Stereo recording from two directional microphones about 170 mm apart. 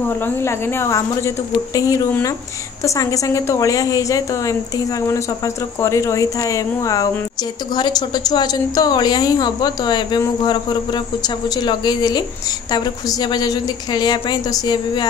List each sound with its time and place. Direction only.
0.4 s a woman's voice: 15° left (ahead or behind)